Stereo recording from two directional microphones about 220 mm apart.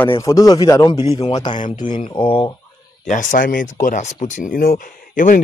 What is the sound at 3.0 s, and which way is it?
Speech, 35° left (ahead or behind).